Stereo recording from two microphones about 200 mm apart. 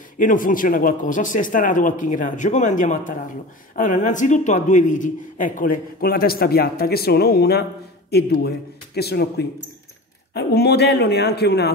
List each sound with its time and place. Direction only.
0.2 s a man's voice: 40° left (ahead or behind)